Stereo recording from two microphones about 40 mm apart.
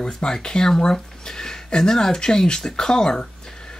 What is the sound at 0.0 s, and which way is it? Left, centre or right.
Speech, left.